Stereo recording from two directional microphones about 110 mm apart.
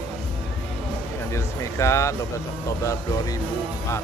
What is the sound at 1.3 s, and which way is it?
Speech, 25° left (ahead or behind).